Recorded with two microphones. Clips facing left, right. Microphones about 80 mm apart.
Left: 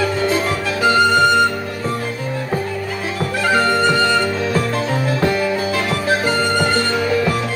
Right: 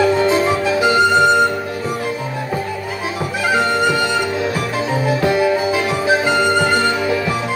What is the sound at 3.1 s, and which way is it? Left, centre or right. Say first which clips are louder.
Music: left 1 dB; centre.